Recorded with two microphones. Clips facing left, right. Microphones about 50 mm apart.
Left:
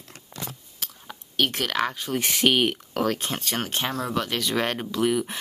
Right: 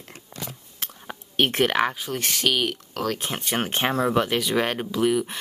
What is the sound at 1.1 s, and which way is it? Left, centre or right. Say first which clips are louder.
Whispering: right 2 dB; right.